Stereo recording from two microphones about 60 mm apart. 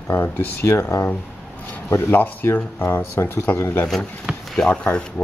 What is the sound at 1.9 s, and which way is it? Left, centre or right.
Speech, left.